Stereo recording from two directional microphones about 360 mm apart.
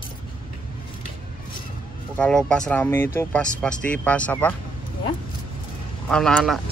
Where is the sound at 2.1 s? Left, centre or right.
Centre.